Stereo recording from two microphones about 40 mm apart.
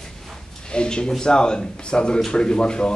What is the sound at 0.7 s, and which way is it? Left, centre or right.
Speech, left.